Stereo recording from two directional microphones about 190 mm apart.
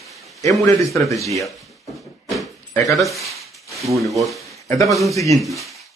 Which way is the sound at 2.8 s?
Centre (ahead or behind).